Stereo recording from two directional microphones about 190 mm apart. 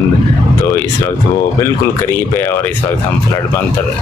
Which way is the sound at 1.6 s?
10° left (ahead or behind).